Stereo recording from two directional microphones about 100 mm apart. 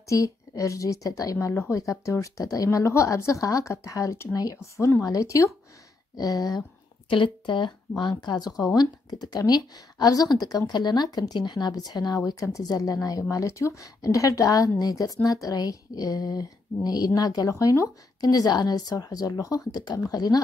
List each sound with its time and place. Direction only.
0.0 s speech: 35° left (ahead or behind)
7.4 s speech: 55° left (ahead or behind)